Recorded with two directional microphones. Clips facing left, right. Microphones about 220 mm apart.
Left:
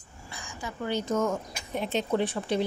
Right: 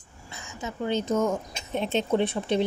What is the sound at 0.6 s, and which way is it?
Speech, 20° right (ahead or behind).